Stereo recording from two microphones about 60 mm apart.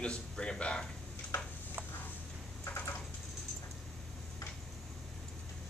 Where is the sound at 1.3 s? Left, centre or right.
Left.